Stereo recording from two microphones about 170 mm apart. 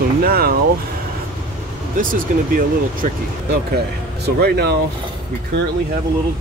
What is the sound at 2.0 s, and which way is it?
Speech, 50° right (ahead or behind).